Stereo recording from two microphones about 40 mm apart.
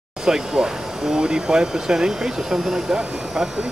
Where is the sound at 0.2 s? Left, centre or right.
Centre.